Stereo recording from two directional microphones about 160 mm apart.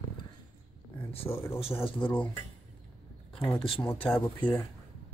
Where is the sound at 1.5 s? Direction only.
35° left (ahead or behind).